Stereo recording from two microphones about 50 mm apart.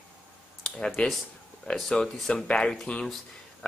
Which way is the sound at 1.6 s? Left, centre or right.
Centre.